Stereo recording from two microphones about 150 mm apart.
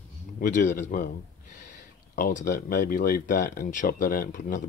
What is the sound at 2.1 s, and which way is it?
Speech, 70° left (ahead or behind).